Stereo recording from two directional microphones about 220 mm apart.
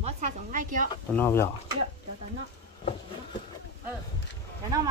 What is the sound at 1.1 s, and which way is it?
Speech, 10° left (ahead or behind).